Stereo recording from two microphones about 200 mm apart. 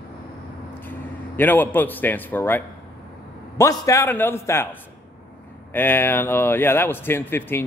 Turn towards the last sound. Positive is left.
turn(degrees=10)  # may be behind; listen again after turning